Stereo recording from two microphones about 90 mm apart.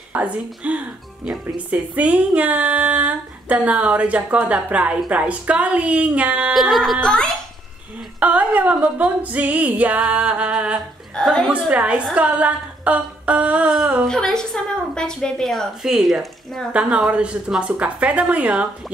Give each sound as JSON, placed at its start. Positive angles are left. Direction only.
{"t": 0.1, "sound": "speech", "side_deg": -15}
{"t": 6.5, "sound": "a woman's voice", "side_deg": 0}
{"t": 8.2, "sound": "speech", "side_deg": -15}
{"t": 11.1, "sound": "a woman's voice", "side_deg": 10}
{"t": 11.5, "sound": "speech", "side_deg": -10}
{"t": 13.7, "sound": "a woman's voice", "side_deg": -5}
{"t": 14.0, "sound": "a woman's voice", "side_deg": 5}
{"t": 16.7, "sound": "speech", "side_deg": -15}